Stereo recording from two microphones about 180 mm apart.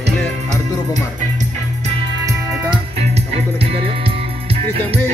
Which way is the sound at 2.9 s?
35° right (ahead or behind).